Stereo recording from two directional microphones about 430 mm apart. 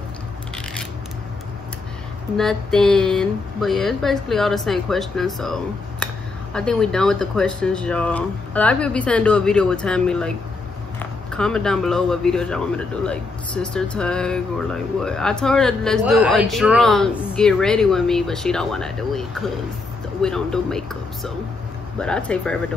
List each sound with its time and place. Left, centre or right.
2.3 s a man's voice: centre